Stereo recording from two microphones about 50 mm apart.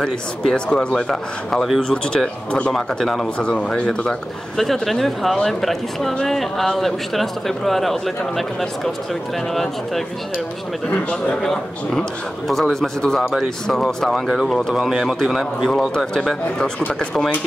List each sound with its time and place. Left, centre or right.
0.0 s speech: centre
2.7 s speech: centre
3.3 s speech: left
4.8 s speech: centre
11.4 s speech: centre
15.7 s speech: centre